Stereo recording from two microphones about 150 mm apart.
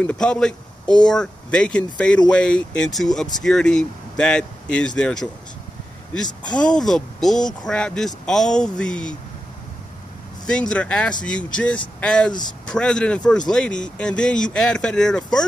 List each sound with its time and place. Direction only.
0.0 s speech: 5° left (ahead or behind)
6.2 s speech: 30° left (ahead or behind)
6.6 s speech: 5° left (ahead or behind)
10.4 s speech: 5° left (ahead or behind)